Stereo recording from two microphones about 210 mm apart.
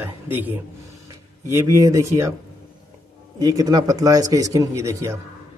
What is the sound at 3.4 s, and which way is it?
A man's voice, 15° right (ahead or behind).